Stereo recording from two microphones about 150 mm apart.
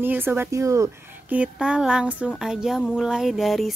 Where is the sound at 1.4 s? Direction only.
5° right (ahead or behind).